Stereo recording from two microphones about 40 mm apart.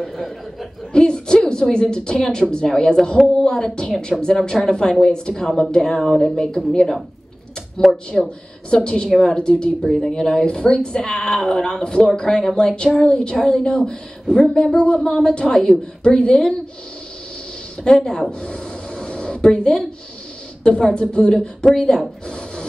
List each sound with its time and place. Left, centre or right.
0.9 s a woman's voice: centre
9.8 s speech: centre
10.1 s a woman's voice: centre
17.8 s a woman's voice: centre
18.4 s a sound: left
20.6 s a woman's voice: left